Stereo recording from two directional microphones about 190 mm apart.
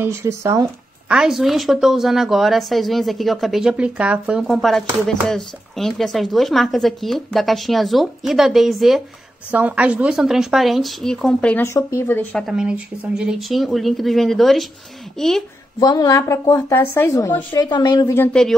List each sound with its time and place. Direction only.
0.0 s speech: 15° right (ahead or behind)
1.1 s speech: centre (ahead or behind)
12.4 s speech: 5° right (ahead or behind)
15.8 s a woman's voice: 20° left (ahead or behind); by 18.6 s 5° left (ahead or behind)